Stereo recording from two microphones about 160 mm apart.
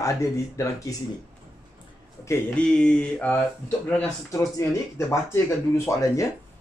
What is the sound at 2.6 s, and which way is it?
Mantra, 5° left (ahead or behind).